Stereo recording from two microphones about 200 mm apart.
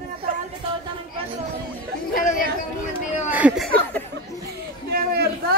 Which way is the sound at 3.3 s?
5° right (ahead or behind).